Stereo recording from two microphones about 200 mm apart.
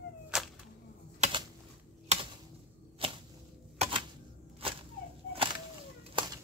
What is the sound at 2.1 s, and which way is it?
Computer keyboard, 35° right (ahead or behind).